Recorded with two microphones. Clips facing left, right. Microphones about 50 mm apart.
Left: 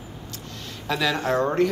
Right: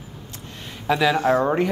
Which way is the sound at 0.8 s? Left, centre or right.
Centre.